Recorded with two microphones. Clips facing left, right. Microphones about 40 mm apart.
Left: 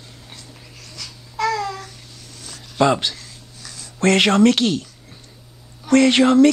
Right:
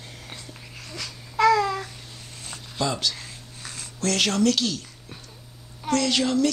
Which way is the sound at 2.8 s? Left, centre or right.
Left.